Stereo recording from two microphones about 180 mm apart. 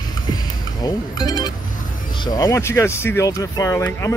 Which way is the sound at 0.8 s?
25° left (ahead or behind).